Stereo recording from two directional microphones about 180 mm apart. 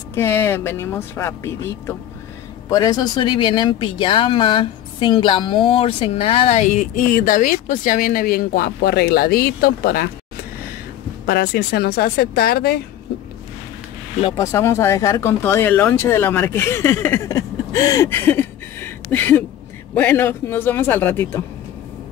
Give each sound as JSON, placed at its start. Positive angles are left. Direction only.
{"t": 0.1, "sound": "speech", "side_deg": 15}
{"t": 11.2, "sound": "speech", "side_deg": 60}
{"t": 14.3, "sound": "speech", "side_deg": 15}